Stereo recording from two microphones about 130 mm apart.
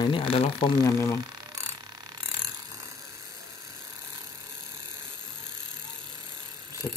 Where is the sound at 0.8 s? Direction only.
20° left (ahead or behind).